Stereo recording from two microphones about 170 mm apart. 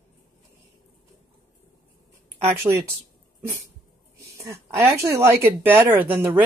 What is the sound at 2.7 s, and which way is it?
Speech, 20° right (ahead or behind).